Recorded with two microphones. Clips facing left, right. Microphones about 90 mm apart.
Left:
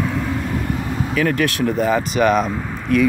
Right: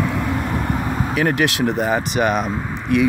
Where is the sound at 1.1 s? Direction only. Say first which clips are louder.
Even; 25° right (ahead or behind).